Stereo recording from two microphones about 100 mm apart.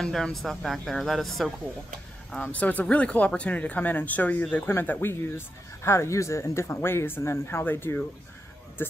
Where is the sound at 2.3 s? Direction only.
15° left (ahead or behind).